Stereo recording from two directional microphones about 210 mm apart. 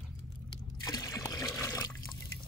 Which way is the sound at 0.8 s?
15° left (ahead or behind).